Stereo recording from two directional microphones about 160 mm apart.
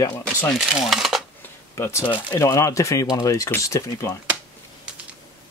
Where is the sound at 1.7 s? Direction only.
15° left (ahead or behind).